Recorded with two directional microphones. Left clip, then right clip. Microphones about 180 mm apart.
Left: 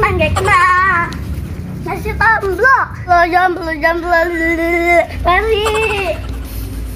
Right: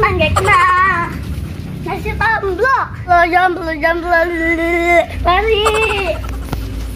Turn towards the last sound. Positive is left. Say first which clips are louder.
# right 1 dB
turn(degrees=5)  # may be behind; listen again after turning